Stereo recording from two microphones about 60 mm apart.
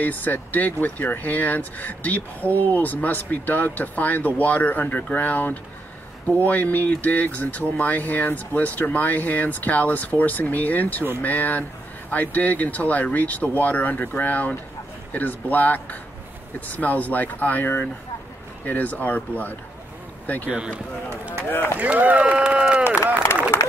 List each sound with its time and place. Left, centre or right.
0.0 s speech: left
20.4 s speech: centre
21.7 s speech: right